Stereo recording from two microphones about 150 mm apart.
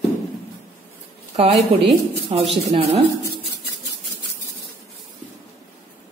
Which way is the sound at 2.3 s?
40° right (ahead or behind).